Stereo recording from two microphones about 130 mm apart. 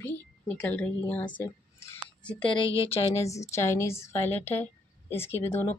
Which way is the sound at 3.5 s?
20° left (ahead or behind).